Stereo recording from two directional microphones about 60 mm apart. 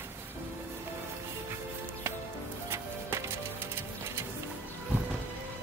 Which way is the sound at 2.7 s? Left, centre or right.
Right.